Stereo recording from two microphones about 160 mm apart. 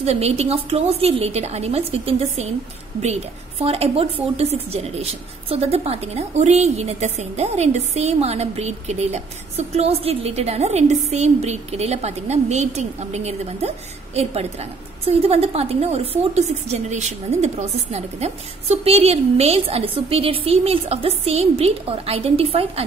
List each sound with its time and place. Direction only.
0.0 s a woman's voice: 40° right (ahead or behind)